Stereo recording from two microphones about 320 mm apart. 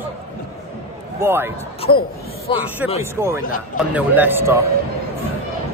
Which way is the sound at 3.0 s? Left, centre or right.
Centre.